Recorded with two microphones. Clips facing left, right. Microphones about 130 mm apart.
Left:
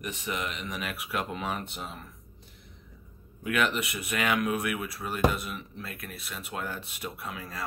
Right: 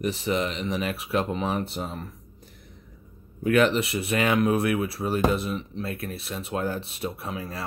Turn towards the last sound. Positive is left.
turn(degrees=-30)  # may be behind; listen again after turning